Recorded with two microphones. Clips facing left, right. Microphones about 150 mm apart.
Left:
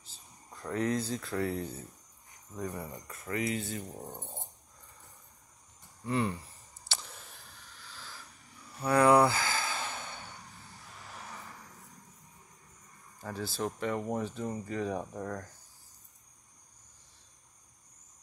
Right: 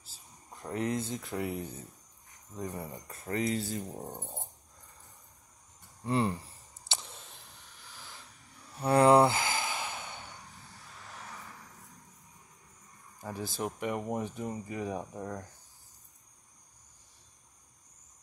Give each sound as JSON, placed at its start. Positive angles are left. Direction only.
{"t": 0.5, "sound": "speech", "side_deg": -20}
{"t": 2.8, "sound": "speech", "side_deg": -25}
{"t": 6.0, "sound": "speech", "side_deg": -30}
{"t": 6.9, "sound": "a sound", "side_deg": -20}
{"t": 8.8, "sound": "sigh", "side_deg": -30}
{"t": 11.1, "sound": "vehicle", "side_deg": 0}
{"t": 13.2, "sound": "speech", "side_deg": -15}